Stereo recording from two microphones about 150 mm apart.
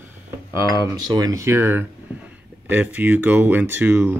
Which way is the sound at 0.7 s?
25° right (ahead or behind).